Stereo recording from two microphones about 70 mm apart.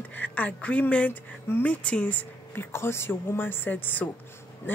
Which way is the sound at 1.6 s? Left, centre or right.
Centre.